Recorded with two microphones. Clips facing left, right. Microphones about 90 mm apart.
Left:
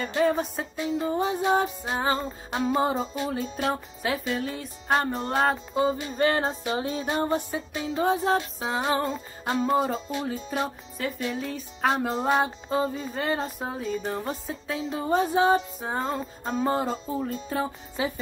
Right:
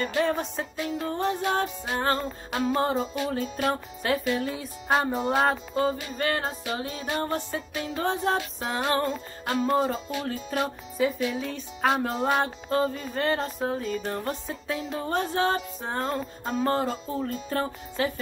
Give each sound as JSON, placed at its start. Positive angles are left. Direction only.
{"t": 0.0, "sound": "music", "side_deg": 0}
{"t": 5.9, "sound": "music", "side_deg": 35}
{"t": 7.2, "sound": "music", "side_deg": 15}
{"t": 7.7, "sound": "music", "side_deg": 0}
{"t": 17.9, "sound": "speech", "side_deg": 10}